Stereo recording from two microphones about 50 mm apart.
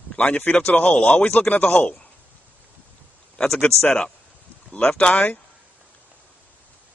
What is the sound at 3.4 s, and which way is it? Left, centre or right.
Speech, centre.